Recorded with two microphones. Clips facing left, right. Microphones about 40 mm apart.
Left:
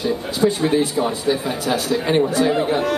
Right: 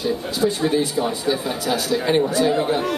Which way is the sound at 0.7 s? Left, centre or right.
Left.